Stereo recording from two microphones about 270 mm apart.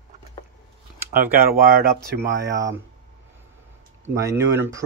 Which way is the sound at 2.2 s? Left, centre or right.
Centre.